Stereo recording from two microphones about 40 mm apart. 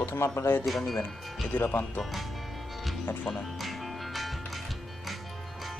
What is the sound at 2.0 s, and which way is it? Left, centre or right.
Speech, centre.